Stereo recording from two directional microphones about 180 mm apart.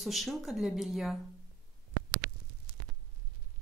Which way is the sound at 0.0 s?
Centre (ahead or behind).